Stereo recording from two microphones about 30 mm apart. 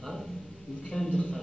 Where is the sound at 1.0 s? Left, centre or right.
Centre.